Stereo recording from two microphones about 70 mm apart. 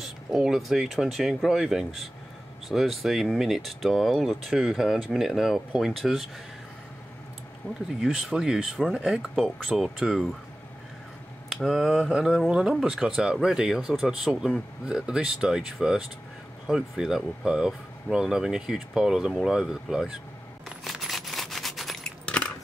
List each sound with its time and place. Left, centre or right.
0.0 s speech: centre
8.0 s speech: centre
11.5 s speech: centre
12.1 s speech: centre
20.6 s a sound: centre
22.2 s coin: centre